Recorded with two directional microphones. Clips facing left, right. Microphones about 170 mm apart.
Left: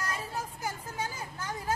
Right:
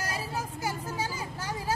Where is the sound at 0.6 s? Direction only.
90° right.